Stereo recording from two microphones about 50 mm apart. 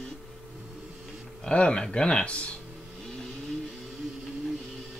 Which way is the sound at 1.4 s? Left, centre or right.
Centre.